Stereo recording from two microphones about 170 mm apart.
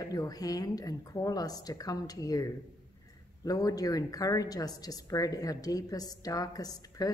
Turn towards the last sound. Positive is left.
turn(degrees=20)  # may be behind; listen again after turning